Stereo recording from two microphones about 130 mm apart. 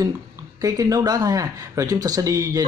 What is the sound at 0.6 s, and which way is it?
Speech, 25° right (ahead or behind).